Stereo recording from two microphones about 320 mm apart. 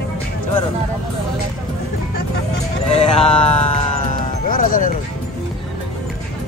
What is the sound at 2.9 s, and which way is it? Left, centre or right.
Music, centre.